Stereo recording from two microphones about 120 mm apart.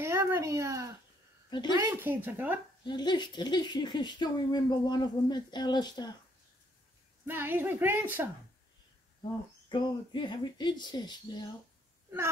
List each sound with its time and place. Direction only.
0.0 s a woman's voice: 20° right (ahead or behind)
2.8 s speech: 40° left (ahead or behind)
7.2 s a woman's voice: 15° right (ahead or behind)
9.7 s speech: 40° left (ahead or behind)